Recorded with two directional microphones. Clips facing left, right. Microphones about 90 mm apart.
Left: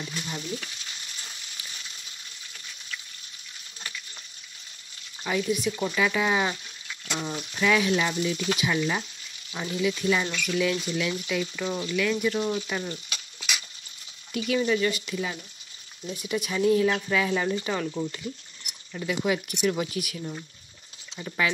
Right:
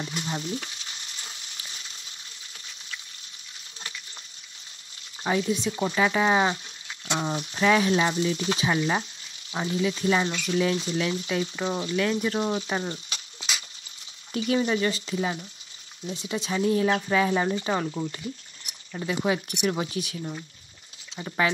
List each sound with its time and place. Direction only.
0.0 s frying: 35° right (ahead or behind)
5.2 s speech: 30° right (ahead or behind)
18.9 s speech: 30° right (ahead or behind)